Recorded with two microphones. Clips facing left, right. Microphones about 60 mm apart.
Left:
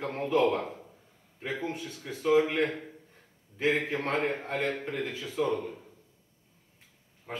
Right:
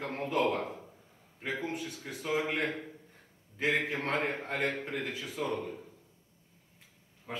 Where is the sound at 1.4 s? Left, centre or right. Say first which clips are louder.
Left 1 dB; left.